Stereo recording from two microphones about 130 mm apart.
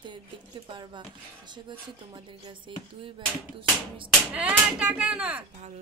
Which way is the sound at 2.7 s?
40° right (ahead or behind).